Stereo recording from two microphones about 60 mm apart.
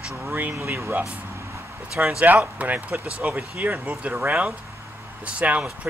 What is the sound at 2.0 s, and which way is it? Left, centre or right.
Speech, right.